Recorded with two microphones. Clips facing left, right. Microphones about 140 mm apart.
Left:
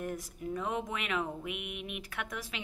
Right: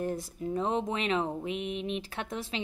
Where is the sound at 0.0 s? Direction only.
30° right (ahead or behind).